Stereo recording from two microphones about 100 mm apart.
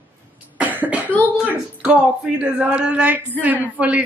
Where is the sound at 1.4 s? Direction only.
10° right (ahead or behind).